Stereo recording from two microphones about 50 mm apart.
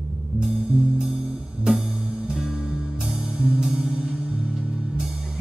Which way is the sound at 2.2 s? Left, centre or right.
Centre.